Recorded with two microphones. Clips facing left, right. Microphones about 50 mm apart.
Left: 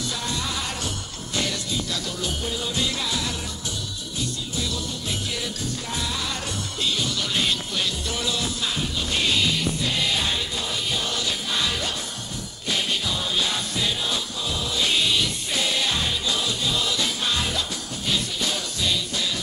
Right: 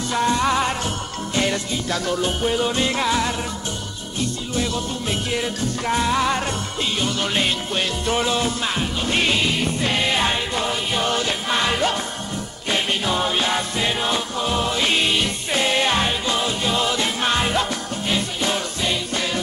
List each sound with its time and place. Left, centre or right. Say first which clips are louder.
0.1 s music: right 10 dB; right
5.3 s music: right 6 dB; right